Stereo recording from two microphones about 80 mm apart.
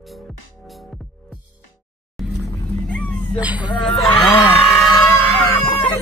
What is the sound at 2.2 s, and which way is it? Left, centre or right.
Vehicle, centre.